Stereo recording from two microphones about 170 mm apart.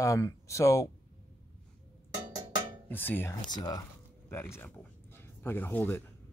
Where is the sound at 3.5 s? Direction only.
25° left (ahead or behind).